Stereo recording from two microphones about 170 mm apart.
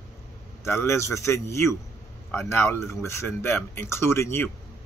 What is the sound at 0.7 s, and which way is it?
Speech, 15° left (ahead or behind).